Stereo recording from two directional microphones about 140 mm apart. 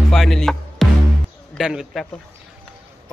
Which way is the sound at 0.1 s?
Centre (ahead or behind).